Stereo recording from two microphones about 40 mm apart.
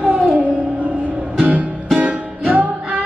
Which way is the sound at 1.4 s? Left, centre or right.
Right.